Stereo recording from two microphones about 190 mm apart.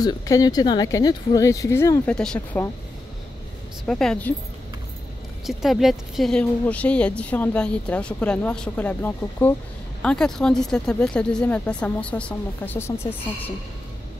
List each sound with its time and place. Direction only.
0.0 s speech: 20° left (ahead or behind)
3.8 s speech: 5° left (ahead or behind)
5.5 s speech: centre (ahead or behind)